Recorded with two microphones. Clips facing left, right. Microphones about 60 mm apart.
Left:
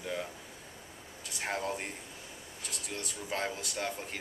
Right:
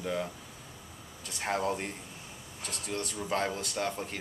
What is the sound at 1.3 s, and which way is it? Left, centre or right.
A man's voice, centre.